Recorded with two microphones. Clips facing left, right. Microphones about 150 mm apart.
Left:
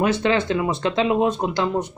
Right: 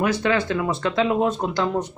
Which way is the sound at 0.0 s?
25° left (ahead or behind).